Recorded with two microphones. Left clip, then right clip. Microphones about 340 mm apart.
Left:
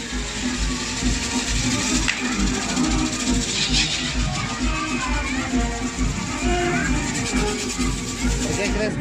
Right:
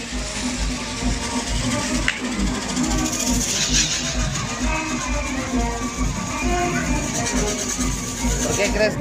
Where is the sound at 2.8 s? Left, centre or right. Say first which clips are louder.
Even; centre.